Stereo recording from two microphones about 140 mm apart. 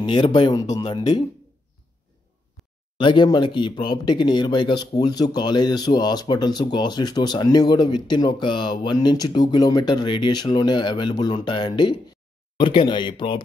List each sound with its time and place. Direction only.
0.0 s speech: 35° left (ahead or behind)
2.6 s a sound: centre (ahead or behind)
3.0 s speech: 35° left (ahead or behind)